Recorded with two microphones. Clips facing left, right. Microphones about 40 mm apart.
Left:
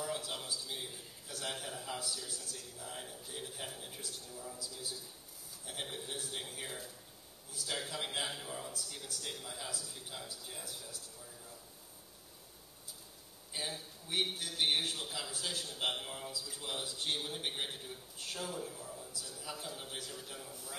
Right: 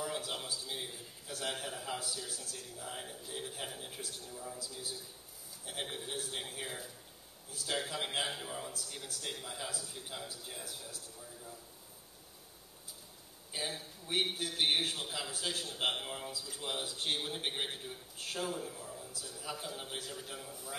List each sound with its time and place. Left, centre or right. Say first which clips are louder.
0.0 s a sound: right 1 dB; centre
2.3 s a man's voice: right 1 dB; centre
5.7 s a man's voice: right 2 dB; centre
13.5 s a man's voice: right 2 dB; centre